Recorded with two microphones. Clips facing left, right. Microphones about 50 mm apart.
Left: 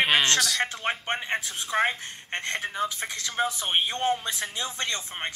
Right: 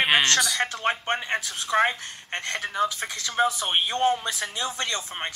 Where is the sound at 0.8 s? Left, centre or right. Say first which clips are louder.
Right 3 dB; right.